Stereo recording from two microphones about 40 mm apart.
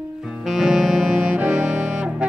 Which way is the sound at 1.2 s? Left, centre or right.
Right.